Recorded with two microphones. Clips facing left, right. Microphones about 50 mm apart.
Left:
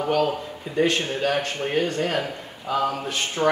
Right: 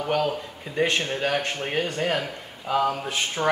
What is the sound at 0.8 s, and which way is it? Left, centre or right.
Speech, right.